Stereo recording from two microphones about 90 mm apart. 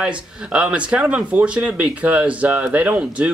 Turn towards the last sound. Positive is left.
turn(degrees=-15)  # may be behind; listen again after turning